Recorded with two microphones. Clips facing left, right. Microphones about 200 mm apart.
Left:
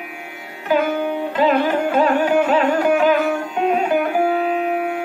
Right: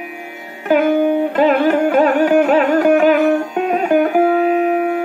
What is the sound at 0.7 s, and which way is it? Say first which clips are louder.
Music: right 6 dB; 50° right (ahead or behind).